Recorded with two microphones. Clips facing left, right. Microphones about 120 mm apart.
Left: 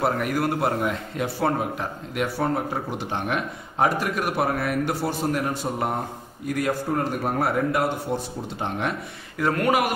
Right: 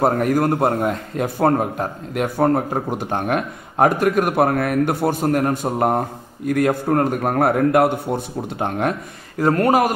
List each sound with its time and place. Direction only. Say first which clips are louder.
0.0 s a man's voice: right 6 dB; 40° right (ahead or behind)
9.4 s speech: right 6 dB; 40° right (ahead or behind)